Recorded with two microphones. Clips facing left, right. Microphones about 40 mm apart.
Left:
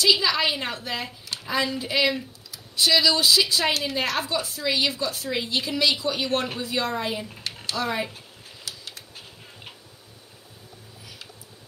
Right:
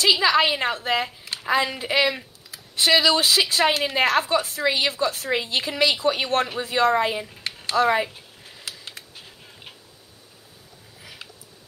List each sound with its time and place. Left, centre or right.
0.0 s a woman's voice: right
3.6 s a woman's voice: right
8.6 s a sound: right